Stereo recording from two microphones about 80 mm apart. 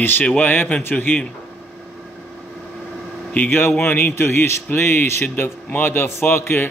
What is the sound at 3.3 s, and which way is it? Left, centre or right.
A man's voice, left.